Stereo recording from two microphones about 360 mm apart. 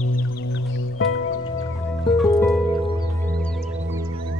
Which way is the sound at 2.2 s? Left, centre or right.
Centre.